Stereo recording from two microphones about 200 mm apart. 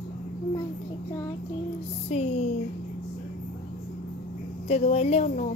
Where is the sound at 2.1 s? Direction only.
30° left (ahead or behind).